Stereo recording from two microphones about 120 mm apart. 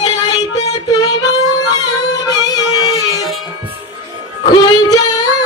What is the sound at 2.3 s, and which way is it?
Music, 30° left (ahead or behind).